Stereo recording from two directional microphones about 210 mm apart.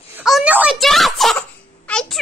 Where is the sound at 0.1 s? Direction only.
5° right (ahead or behind).